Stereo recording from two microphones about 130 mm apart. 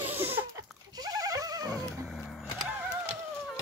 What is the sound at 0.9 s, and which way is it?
Neigh, 30° right (ahead or behind).